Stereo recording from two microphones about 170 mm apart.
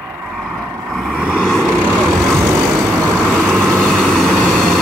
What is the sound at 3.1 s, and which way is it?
Vehicle, 5° left (ahead or behind).